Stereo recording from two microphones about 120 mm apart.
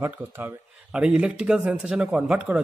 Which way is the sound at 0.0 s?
20° right (ahead or behind).